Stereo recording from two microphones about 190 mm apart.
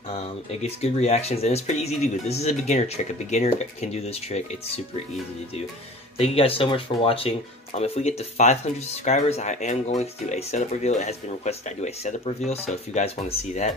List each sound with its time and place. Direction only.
0.1 s speech: 35° left (ahead or behind)
6.1 s speech: 30° left (ahead or behind)